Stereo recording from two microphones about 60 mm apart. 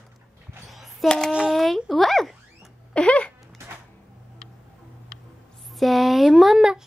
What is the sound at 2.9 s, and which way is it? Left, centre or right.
Speech, centre.